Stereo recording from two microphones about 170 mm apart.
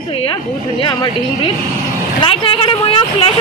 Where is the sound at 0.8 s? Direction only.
25° left (ahead or behind).